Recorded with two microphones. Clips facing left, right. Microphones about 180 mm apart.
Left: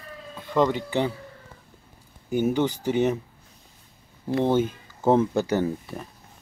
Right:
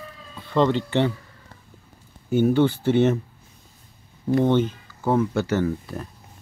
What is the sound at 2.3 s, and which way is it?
Speech, 15° left (ahead or behind).